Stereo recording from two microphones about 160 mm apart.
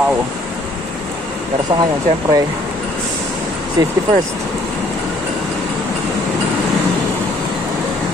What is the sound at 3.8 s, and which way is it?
Speech, 25° right (ahead or behind).